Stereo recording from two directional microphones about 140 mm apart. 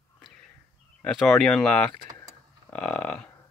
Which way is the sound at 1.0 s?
5° left (ahead or behind).